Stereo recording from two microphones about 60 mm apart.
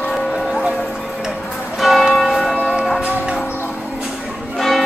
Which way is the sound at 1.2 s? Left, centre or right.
Centre.